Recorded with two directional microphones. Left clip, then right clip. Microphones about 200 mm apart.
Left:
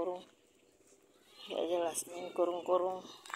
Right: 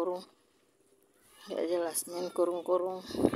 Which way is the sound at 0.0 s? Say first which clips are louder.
Right 4 dB; 60° right (ahead or behind).